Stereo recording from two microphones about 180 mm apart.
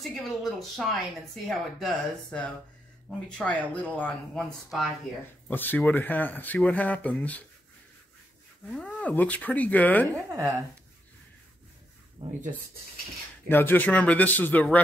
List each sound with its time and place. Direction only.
0.1 s speech: centre (ahead or behind)
8.6 s speech: 5° left (ahead or behind)
10.1 s speech: 15° right (ahead or behind)
12.2 s speech: 35° right (ahead or behind)
13.5 s speech: 10° left (ahead or behind)